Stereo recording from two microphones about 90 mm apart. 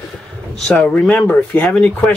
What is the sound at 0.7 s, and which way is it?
Speech, 15° left (ahead or behind).